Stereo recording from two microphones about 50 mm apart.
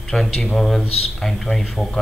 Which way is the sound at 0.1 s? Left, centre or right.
Centre.